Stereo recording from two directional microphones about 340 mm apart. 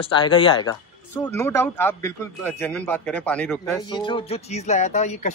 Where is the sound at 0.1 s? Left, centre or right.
Centre.